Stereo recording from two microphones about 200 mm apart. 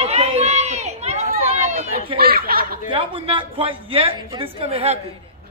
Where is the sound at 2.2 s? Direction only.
50° right (ahead or behind).